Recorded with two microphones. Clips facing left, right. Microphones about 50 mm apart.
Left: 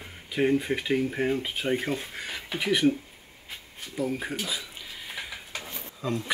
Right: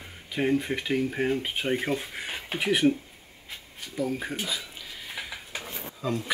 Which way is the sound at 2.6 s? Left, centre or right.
Centre.